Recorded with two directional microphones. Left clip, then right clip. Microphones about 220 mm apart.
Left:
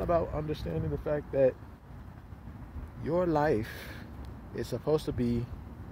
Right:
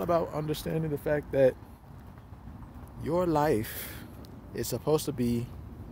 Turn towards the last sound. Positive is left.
turn(degrees=-10)  # may be behind; listen again after turning